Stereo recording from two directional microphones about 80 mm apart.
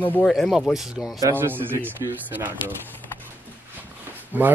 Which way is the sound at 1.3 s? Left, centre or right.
Right.